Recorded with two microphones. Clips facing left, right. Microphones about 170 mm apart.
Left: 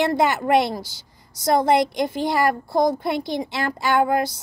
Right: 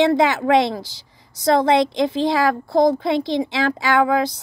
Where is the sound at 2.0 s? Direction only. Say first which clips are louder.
Right 3 dB; 90° right.